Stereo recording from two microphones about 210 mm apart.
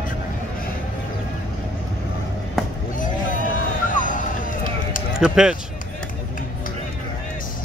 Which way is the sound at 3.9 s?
40° left (ahead or behind).